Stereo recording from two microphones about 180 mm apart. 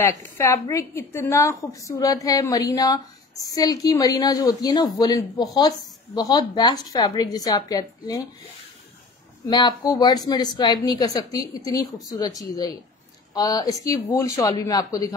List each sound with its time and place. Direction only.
0.1 s a woman's voice: 15° left (ahead or behind)
9.5 s a woman's voice: 25° left (ahead or behind)